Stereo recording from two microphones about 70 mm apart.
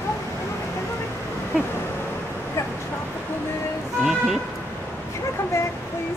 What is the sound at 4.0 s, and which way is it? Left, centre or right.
Vehicle, centre.